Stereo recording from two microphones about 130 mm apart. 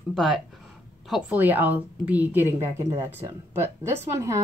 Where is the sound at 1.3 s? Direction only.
15° right (ahead or behind).